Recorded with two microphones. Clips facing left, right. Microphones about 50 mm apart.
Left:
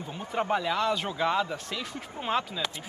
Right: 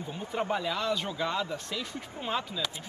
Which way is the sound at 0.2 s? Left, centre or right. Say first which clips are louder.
Left 3 dB; centre.